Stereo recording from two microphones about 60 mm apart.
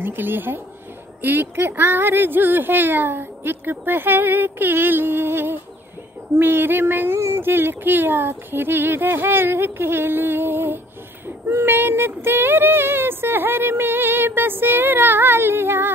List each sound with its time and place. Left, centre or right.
0.0 s female singing: right
7.2 s speech: right
7.4 s female singing: right